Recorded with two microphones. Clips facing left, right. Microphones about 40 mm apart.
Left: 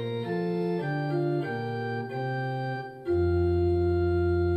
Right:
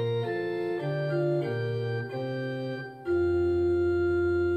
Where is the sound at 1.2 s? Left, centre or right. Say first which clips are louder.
Right 2 dB; centre.